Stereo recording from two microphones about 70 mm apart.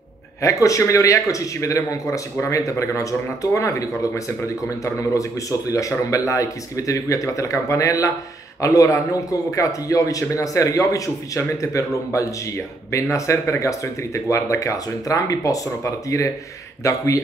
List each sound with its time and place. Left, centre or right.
0.4 s speech: left